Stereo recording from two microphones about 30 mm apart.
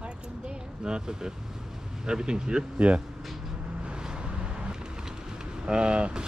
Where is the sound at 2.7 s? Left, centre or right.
Right.